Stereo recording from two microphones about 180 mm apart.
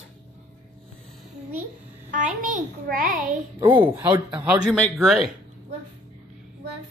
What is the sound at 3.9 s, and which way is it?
Speech, 10° right (ahead or behind).